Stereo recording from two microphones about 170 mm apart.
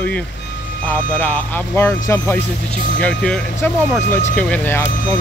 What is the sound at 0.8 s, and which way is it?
Speech, 10° left (ahead or behind).